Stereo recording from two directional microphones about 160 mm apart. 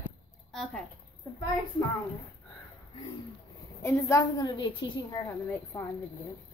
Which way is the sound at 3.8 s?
15° left (ahead or behind).